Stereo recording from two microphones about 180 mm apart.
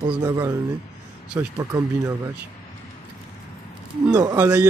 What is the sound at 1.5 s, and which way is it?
Speech, 20° right (ahead or behind).